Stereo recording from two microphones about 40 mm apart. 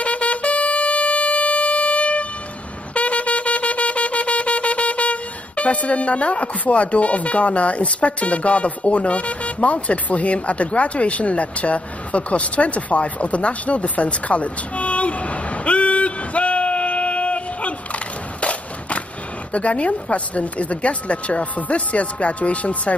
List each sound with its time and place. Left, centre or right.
0.0 s music: left
2.9 s shofar: left
19.5 s speech: left